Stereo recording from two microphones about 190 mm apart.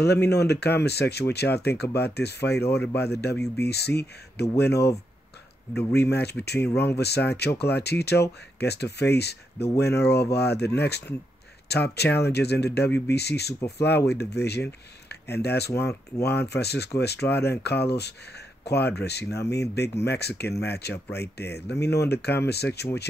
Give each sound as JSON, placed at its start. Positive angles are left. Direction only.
{"t": 0.0, "sound": "speech", "side_deg": 60}
{"t": 5.9, "sound": "speech", "side_deg": 60}
{"t": 15.7, "sound": "speech", "side_deg": 15}
{"t": 16.3, "sound": "speech", "side_deg": 60}